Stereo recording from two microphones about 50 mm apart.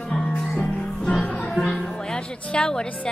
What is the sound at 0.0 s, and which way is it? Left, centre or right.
Music, left.